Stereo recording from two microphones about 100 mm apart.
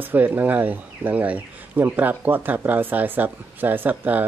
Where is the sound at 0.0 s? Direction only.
20° right (ahead or behind).